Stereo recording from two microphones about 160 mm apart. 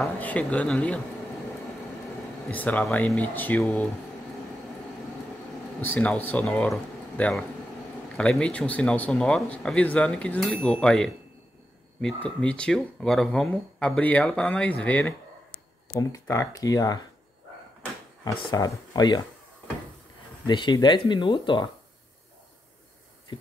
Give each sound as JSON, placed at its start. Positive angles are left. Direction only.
{"t": 0.0, "sound": "speech", "side_deg": 10}
{"t": 2.5, "sound": "speech", "side_deg": 10}
{"t": 5.8, "sound": "speech", "side_deg": 10}
{"t": 12.4, "sound": "speech", "side_deg": 5}
{"t": 18.2, "sound": "speech", "side_deg": 25}
{"t": 20.4, "sound": "speech", "side_deg": 30}